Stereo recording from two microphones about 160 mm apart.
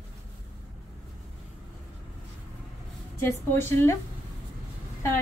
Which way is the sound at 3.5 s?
15° left (ahead or behind).